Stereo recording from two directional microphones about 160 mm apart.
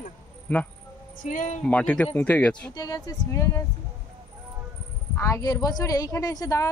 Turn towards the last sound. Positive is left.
turn(degrees=20)  # may be behind; listen again after turning